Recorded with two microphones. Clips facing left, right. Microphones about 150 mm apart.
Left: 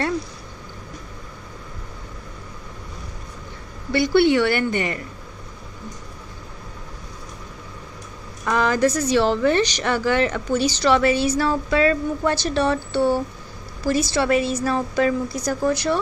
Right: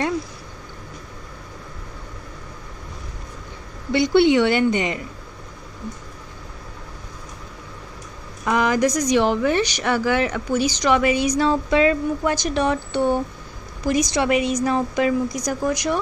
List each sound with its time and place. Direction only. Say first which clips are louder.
3.9 s a woman's voice: right 1 dB; 20° right (ahead or behind)
8.5 s speech: even; 15° right (ahead or behind)